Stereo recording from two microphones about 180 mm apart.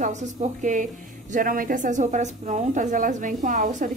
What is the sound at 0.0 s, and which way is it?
A woman's voice, 40° right (ahead or behind).